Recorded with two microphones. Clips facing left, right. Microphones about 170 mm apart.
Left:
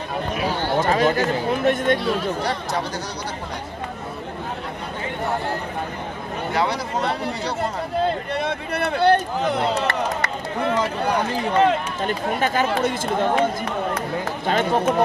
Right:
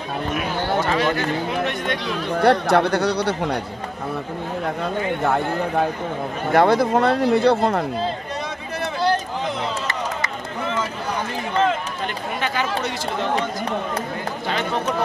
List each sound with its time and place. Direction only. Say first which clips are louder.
0.4 s chatter: left 2 dB; 40° left (ahead or behind)
2.4 s speech: right 9 dB; 65° right (ahead or behind)
6.5 s speech: right 8 dB; 50° right (ahead or behind)
8.0 s a sound: left 3 dB; 60° left (ahead or behind)
12.4 s speech: left 2 dB; 50° left (ahead or behind)
14.5 s speech: left 5 dB; 50° left (ahead or behind)